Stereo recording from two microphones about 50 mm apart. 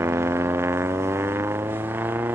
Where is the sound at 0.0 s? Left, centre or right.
Right.